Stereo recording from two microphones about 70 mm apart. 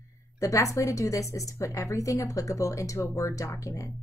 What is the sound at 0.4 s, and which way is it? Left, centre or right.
A woman's voice, left.